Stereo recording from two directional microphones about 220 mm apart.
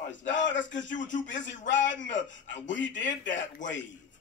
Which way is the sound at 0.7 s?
55° left (ahead or behind).